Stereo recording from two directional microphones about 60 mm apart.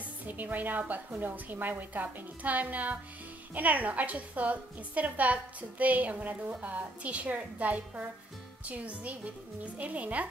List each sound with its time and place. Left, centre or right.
0.3 s a woman's voice: right